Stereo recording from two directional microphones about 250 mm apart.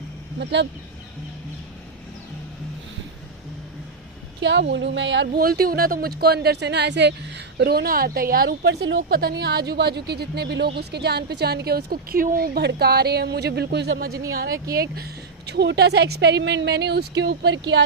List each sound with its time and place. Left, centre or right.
0.4 s speech: right
4.4 s speech: right